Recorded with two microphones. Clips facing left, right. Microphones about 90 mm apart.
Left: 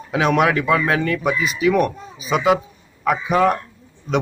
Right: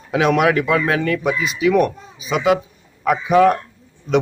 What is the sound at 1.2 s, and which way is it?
Speech, 40° left (ahead or behind).